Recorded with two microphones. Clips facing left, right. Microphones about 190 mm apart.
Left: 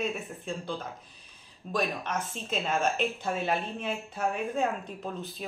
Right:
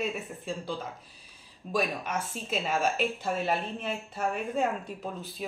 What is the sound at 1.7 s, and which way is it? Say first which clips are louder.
A woman's voice: right 1 dB; 5° right (ahead or behind).